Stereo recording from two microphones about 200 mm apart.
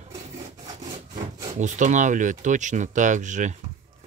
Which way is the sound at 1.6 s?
35° right (ahead or behind).